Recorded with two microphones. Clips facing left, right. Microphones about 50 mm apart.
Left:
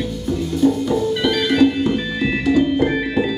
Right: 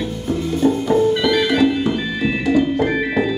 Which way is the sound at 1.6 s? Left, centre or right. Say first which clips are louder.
Left 1 dB; centre.